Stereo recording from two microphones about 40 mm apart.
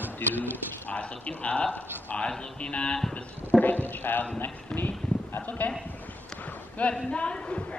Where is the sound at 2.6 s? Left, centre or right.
Left.